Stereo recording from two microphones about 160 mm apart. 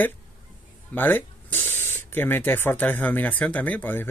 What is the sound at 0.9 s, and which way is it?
Speech, 10° left (ahead or behind).